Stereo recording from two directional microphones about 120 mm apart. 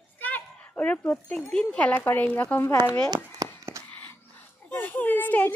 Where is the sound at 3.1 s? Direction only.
25° right (ahead or behind).